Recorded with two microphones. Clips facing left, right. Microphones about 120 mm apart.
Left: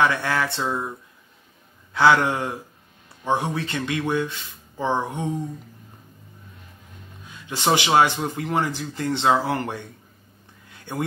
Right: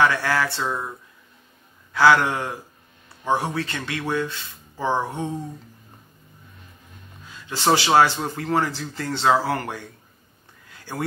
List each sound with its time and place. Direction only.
0.0 s speech: 20° left (ahead or behind)
2.0 s speech: 25° left (ahead or behind)
7.2 s speech: 20° left (ahead or behind)
10.7 s a sound: 20° left (ahead or behind)